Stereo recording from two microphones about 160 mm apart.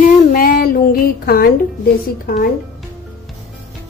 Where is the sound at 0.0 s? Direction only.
60° left (ahead or behind).